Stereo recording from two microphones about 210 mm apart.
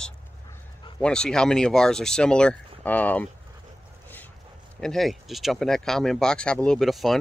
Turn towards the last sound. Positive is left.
turn(degrees=0)  # may be behind; listen again after turning